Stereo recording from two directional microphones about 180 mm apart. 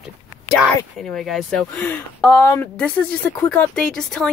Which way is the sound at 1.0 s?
Centre (ahead or behind).